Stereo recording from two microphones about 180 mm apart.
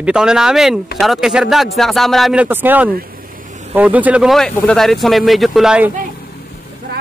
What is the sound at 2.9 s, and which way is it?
Vehicle, 55° right (ahead or behind).